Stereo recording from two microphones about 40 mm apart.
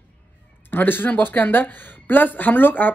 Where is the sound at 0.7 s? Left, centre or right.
Left.